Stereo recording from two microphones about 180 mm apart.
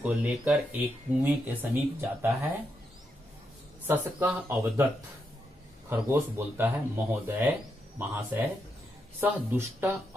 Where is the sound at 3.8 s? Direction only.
10° right (ahead or behind).